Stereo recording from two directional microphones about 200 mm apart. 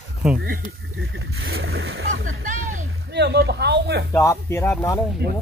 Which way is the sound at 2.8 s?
55° right (ahead or behind).